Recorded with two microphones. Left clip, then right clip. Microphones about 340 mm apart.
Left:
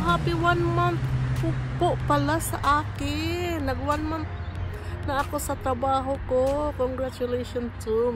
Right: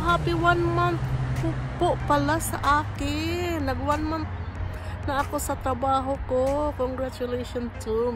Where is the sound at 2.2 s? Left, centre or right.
Centre.